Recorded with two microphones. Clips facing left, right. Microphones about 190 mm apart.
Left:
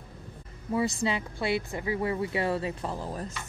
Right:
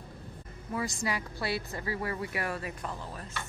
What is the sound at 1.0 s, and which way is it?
Speech, 20° left (ahead or behind).